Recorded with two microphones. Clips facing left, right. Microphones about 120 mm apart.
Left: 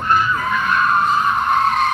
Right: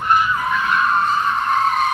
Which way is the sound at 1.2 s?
5° left (ahead or behind).